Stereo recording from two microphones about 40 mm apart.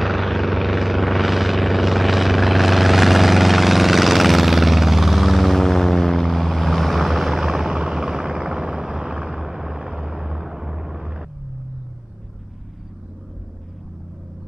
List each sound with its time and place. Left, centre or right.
0.0 s vehicle: centre